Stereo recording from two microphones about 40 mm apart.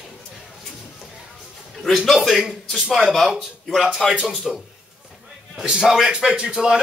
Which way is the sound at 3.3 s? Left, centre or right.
Centre.